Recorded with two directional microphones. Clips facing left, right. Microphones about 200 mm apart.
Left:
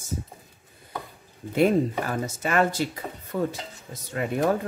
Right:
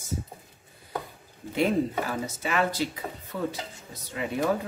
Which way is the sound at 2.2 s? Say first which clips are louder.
Left 6 dB; 50° left (ahead or behind).